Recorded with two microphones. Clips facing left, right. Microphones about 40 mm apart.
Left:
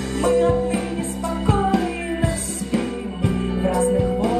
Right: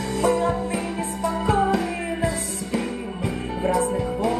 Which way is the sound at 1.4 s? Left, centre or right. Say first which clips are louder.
Left 2 dB; left.